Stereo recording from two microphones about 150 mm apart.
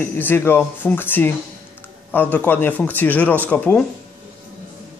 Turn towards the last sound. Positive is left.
turn(degrees=10)  # may be behind; listen again after turning